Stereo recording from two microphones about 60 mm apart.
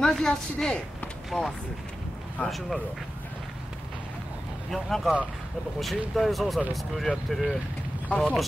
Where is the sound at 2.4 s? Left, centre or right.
Left.